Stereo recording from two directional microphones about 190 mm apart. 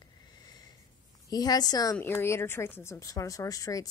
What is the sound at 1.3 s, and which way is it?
A woman's voice, 20° left (ahead or behind).